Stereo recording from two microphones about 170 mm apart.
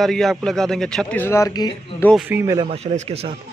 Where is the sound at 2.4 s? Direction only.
20° right (ahead or behind).